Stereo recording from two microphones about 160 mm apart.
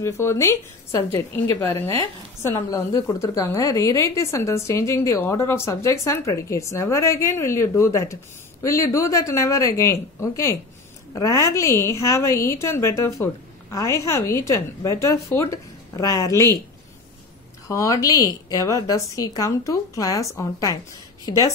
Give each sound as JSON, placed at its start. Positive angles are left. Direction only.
{"t": 0.0, "sound": "a woman's voice", "side_deg": 15}
{"t": 17.6, "sound": "a woman's voice", "side_deg": 20}